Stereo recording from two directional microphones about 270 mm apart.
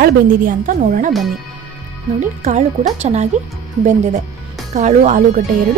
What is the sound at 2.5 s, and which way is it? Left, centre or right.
Speech, right.